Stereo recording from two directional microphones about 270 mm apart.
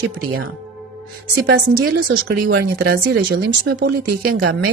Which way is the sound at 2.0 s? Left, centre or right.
Right.